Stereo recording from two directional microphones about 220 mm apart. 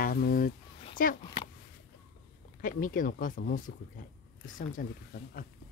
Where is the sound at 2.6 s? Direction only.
40° left (ahead or behind).